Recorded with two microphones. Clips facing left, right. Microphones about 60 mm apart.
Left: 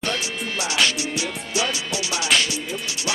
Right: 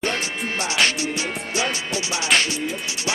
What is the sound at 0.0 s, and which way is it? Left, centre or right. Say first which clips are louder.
Music: right 2 dB; right.